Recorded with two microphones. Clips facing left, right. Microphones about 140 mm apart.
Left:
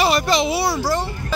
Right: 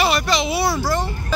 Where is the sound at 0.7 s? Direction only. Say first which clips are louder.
Even; 10° left (ahead or behind).